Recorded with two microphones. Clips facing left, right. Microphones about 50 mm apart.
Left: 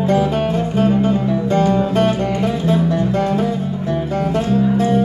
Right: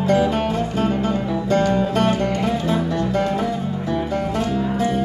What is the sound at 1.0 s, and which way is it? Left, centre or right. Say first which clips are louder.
Music: left 4 dB; left.